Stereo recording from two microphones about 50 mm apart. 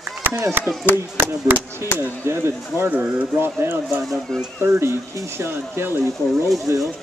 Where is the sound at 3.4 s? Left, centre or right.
Right.